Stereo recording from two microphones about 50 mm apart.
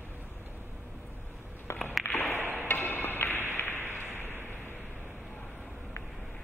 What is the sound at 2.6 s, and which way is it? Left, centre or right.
Music, left.